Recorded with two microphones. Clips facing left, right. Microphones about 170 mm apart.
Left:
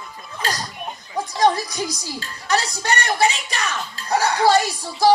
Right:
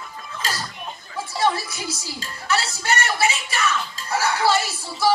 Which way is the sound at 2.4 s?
40° left (ahead or behind).